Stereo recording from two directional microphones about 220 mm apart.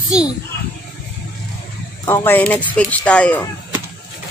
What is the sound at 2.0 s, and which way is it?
A child's voice, 10° left (ahead or behind).